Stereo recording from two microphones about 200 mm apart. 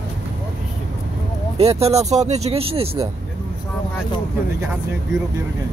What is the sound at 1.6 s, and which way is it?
Speech, 30° right (ahead or behind).